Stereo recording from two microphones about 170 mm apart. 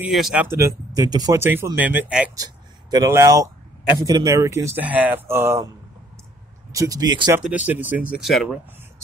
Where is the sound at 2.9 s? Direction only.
20° right (ahead or behind).